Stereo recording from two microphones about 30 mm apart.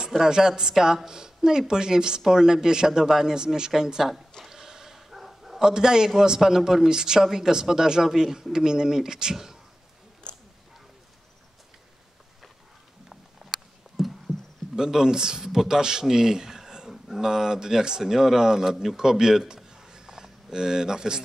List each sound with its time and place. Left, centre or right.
0.2 s speech: centre
4.5 s dog: centre
5.6 s speech: right
13.1 s a sound: centre
14.8 s speech: right
15.4 s a man's voice: centre
18.9 s a sound: centre